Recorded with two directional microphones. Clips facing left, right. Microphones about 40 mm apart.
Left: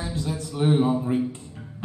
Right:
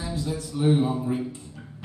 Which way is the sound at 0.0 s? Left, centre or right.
Left.